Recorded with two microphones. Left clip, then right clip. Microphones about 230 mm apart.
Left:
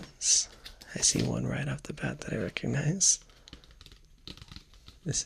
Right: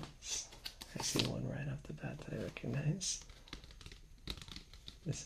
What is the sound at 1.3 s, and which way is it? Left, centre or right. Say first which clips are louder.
Speech: left 10 dB; left.